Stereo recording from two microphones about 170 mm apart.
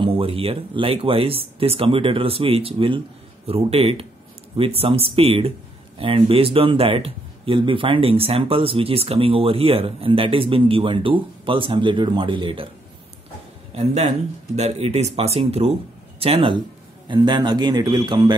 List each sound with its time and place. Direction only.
0.0 s speech: 30° right (ahead or behind)
13.7 s a man's voice: 40° right (ahead or behind); by 18.3 s 25° right (ahead or behind)